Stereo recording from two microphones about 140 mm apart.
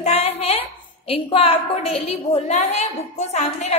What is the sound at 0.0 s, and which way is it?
A woman's voice, 50° left (ahead or behind).